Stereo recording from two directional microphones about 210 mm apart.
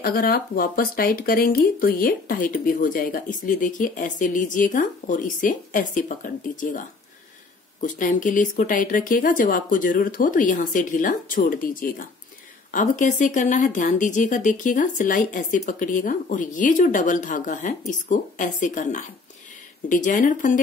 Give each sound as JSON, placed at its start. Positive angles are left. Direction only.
{"t": 0.0, "sound": "speech", "side_deg": 45}
{"t": 7.8, "sound": "speech", "side_deg": 40}